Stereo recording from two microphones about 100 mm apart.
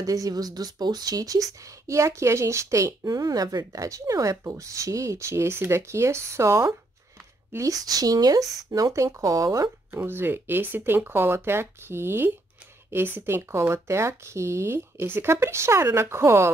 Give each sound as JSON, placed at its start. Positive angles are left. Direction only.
{"t": 0.0, "sound": "speech", "side_deg": -35}
{"t": 9.9, "sound": "speech", "side_deg": -20}